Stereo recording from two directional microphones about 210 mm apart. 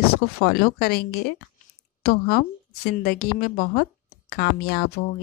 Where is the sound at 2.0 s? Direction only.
45° left (ahead or behind).